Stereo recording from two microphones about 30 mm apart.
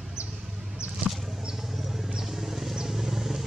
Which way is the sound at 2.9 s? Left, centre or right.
Centre.